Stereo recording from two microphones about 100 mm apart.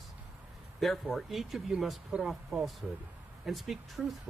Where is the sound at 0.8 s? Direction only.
Centre (ahead or behind).